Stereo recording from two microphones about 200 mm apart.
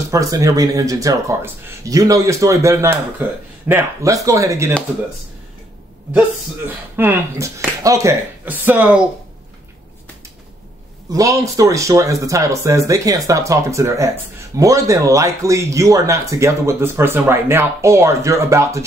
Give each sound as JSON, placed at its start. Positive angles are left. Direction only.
{"t": 0.1, "sound": "speech", "side_deg": -15}
{"t": 6.1, "sound": "speech", "side_deg": -10}
{"t": 11.1, "sound": "speech", "side_deg": -15}